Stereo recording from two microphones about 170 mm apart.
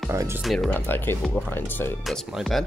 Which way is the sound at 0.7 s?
10° left (ahead or behind).